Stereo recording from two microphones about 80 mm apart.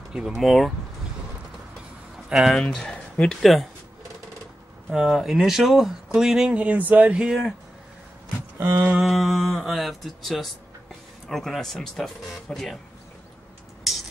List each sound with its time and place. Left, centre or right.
0.1 s speech: centre
2.2 s speech: centre
4.9 s speech: centre
6.5 s speech: centre
7.2 s speech: centre
8.5 s a sound: right
8.9 s speech: centre